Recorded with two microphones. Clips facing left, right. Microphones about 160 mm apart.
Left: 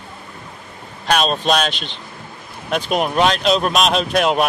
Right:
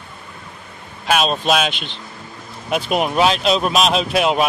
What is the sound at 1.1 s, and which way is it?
Speech, 5° right (ahead or behind).